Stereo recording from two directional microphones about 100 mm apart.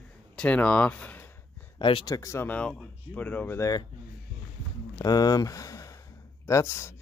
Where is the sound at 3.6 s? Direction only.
40° left (ahead or behind).